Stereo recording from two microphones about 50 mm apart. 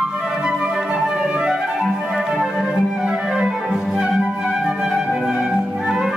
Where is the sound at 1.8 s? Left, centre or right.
Centre.